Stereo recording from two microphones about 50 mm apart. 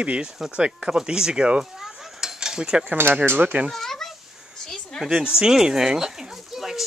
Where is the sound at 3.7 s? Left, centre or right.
Centre.